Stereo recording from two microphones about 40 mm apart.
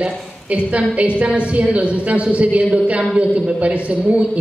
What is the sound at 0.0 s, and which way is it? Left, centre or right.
A woman's voice, right.